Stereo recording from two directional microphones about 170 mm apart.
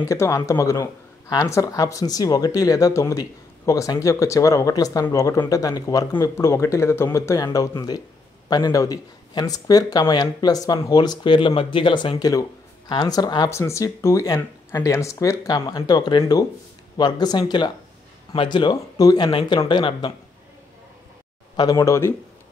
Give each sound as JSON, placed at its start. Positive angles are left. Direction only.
{"t": 0.0, "sound": "speech", "side_deg": 15}
{"t": 21.5, "sound": "speech", "side_deg": 20}